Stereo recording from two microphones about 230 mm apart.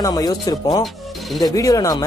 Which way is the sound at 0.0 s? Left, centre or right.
Centre.